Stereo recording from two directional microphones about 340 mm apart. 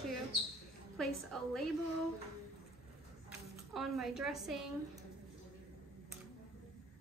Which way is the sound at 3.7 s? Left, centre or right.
Centre.